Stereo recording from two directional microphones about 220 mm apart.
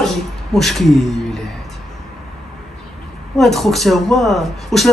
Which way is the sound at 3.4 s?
Centre (ahead or behind).